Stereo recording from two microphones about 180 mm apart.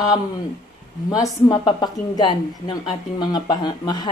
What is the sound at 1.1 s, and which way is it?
A woman's voice, 20° left (ahead or behind).